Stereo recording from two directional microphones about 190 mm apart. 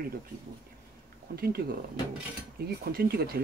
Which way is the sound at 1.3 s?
55° right (ahead or behind).